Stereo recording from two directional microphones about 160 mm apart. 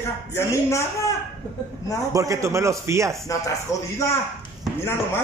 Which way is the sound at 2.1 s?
20° right (ahead or behind).